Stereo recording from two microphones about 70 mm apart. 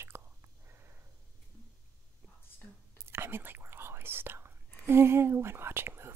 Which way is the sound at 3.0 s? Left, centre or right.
Right.